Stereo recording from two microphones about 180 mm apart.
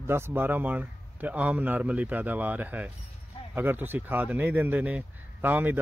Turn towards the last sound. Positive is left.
turn(degrees=-10)  # may be behind; listen again after turning